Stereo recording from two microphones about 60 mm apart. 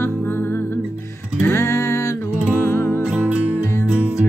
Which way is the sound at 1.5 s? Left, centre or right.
Left.